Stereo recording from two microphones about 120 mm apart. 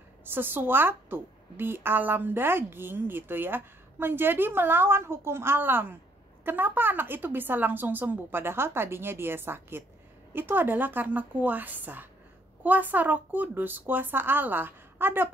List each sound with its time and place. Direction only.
0.2 s a woman's voice: 15° right (ahead or behind)